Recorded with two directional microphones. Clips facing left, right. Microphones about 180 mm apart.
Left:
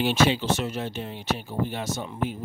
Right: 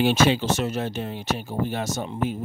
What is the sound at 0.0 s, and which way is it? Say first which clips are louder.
Speech: right 2 dB; 45° right (ahead or behind).